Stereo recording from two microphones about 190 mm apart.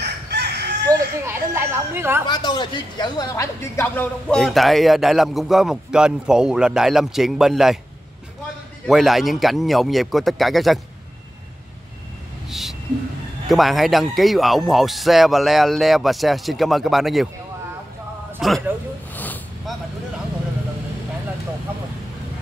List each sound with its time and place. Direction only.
0.0 s crowing: 60° right (ahead or behind)
0.8 s speech: 15° right (ahead or behind)
2.2 s speech: 25° left (ahead or behind); by 7.8 s centre (ahead or behind)
8.8 s speech: centre (ahead or behind)
12.4 s a sound: centre (ahead or behind)
13.5 s speech: centre (ahead or behind)
18.4 s speech: centre (ahead or behind)
19.1 s vehicle: 10° left (ahead or behind)